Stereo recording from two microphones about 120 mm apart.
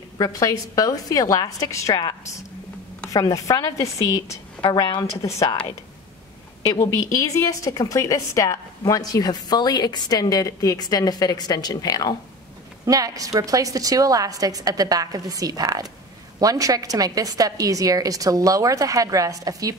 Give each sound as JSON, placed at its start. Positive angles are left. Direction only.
{"t": 0.2, "sound": "a woman's voice", "side_deg": 30}
{"t": 4.6, "sound": "a woman's voice", "side_deg": 40}
{"t": 5.2, "sound": "a woman's voice", "side_deg": 25}
{"t": 6.9, "sound": "a woman's voice", "side_deg": 25}
{"t": 12.8, "sound": "a woman's voice", "side_deg": -30}